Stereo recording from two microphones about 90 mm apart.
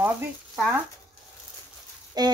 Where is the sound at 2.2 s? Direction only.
45° right (ahead or behind).